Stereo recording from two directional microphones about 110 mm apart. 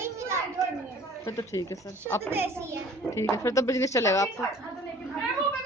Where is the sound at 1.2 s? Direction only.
25° left (ahead or behind).